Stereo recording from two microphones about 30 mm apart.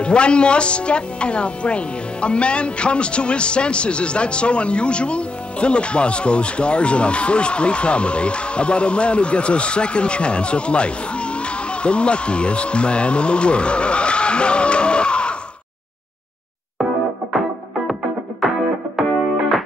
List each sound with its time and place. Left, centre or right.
0.0 s speech: left
17.3 s music: centre